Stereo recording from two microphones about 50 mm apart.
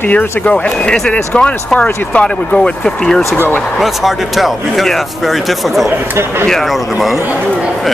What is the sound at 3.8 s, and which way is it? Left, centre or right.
Speech, centre.